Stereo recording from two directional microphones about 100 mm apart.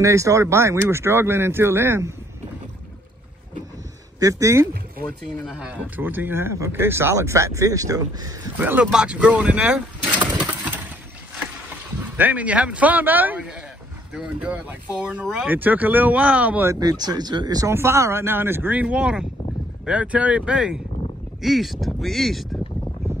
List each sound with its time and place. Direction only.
0.0 s speech: 30° right (ahead or behind)
4.2 s speech: 35° right (ahead or behind)
5.5 s speech: 10° right (ahead or behind); by 8.4 s 35° right (ahead or behind)
8.5 s speech: 15° right (ahead or behind)
12.2 s speech: 15° right (ahead or behind)
16.8 s speech: 40° right (ahead or behind)
17.7 s speech: 25° right (ahead or behind); by 22.6 s centre (ahead or behind)